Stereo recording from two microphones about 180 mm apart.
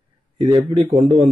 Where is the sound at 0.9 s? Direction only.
25° right (ahead or behind).